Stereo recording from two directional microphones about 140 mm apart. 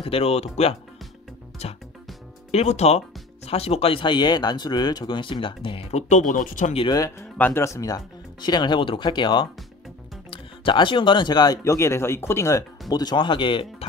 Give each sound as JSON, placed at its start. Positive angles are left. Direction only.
{"t": 0.0, "sound": "speech", "side_deg": 45}
{"t": 2.5, "sound": "speech", "side_deg": 50}
{"t": 6.9, "sound": "speech", "side_deg": 25}
{"t": 7.3, "sound": "speech", "side_deg": 15}
{"t": 12.9, "sound": "speech", "side_deg": 30}